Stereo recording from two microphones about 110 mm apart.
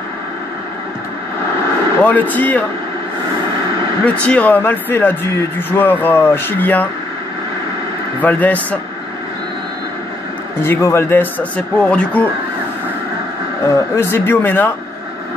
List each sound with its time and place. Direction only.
2.0 s speech: 15° left (ahead or behind)
4.0 s speech: 10° left (ahead or behind)
8.2 s speech: 15° left (ahead or behind)
10.6 s speech: 25° left (ahead or behind)
13.7 s speech: 20° left (ahead or behind)